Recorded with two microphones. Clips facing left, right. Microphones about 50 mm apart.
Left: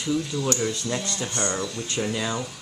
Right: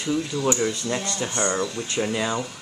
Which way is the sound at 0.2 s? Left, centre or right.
Right.